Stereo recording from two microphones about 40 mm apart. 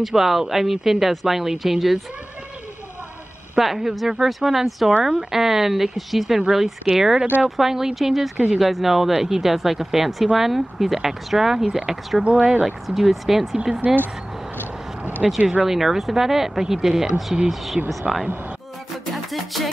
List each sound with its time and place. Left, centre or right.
0.0 s speech: centre
3.5 s speech: centre
12.2 s speech: right
12.6 s speech: centre
13.8 s speech: right
15.2 s speech: centre
19.1 s music: centre